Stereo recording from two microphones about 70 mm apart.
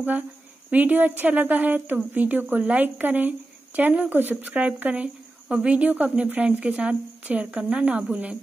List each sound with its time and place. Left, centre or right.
0.7 s speech: right